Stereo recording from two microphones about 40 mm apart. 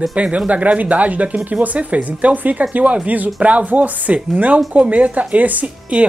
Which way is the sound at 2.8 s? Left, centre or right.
Right.